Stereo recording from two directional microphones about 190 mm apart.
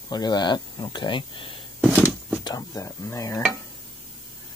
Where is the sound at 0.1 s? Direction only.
20° left (ahead or behind).